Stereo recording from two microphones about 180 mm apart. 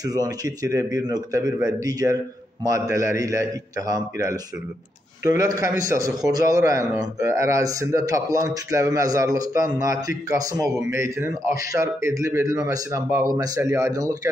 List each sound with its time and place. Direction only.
0.0 s a man's voice: 20° right (ahead or behind)